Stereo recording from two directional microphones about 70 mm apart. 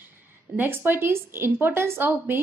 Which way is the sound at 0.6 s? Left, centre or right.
Right.